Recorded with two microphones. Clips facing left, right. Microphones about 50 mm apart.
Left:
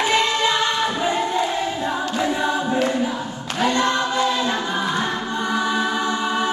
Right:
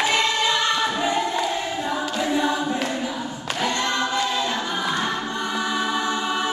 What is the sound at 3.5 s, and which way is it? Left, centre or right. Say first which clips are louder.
Choir: left 5 dB; left.